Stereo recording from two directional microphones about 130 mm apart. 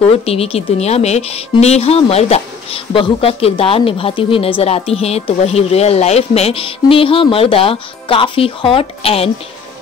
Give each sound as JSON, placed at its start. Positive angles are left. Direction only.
{"t": 0.2, "sound": "speech", "side_deg": 50}